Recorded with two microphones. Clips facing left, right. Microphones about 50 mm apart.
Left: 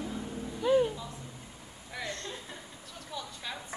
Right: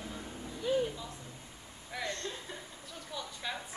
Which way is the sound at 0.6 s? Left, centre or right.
Left.